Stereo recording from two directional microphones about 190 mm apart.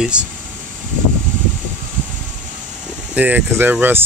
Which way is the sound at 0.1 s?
5° right (ahead or behind).